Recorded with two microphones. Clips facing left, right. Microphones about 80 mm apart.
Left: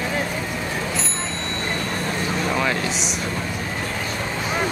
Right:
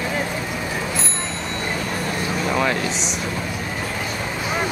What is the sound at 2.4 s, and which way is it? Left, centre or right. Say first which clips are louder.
Speech: right 2 dB; centre.